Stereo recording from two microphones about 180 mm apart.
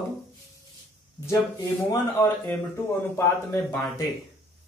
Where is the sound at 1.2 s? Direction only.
20° left (ahead or behind).